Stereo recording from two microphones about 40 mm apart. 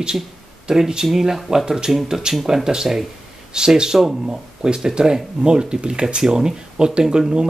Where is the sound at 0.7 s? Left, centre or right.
Centre.